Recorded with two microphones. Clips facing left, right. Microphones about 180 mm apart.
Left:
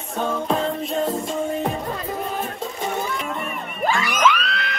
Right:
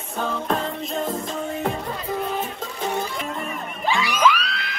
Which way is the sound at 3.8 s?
45° left (ahead or behind).